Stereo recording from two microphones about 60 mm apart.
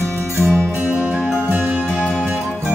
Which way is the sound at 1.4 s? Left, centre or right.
Right.